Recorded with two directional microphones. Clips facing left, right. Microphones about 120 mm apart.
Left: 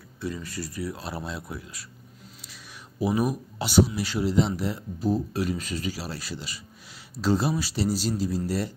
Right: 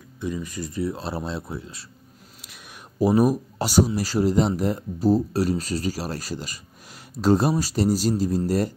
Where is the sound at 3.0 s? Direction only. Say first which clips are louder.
Right 6 dB; 40° right (ahead or behind).